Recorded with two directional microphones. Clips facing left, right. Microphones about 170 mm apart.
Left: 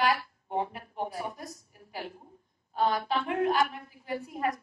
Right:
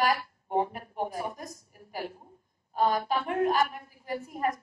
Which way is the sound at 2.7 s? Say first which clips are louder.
Right 1 dB; 45° right (ahead or behind).